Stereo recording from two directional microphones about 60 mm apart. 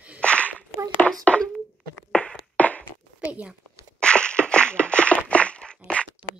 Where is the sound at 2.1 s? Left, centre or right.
Left.